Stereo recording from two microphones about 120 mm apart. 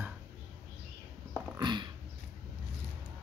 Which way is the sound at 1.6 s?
40° right (ahead or behind).